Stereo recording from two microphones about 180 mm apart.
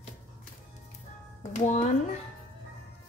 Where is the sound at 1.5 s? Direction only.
40° left (ahead or behind).